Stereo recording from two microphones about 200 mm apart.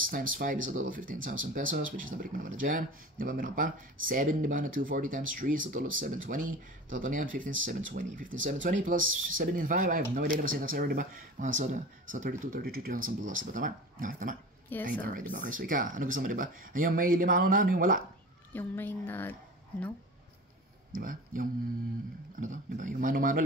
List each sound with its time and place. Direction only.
0.0 s speech: 45° right (ahead or behind)
14.7 s a woman's voice: 10° left (ahead or behind)
15.3 s speech: 40° right (ahead or behind)
18.5 s a woman's voice: 10° left (ahead or behind)
20.9 s speech: 45° right (ahead or behind)